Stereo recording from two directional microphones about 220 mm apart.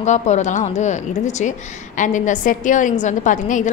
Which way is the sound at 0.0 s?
30° left (ahead or behind).